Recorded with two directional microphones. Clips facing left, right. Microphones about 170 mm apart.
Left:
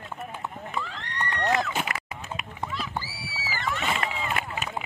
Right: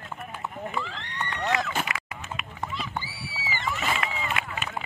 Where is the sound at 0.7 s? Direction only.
Centre (ahead or behind).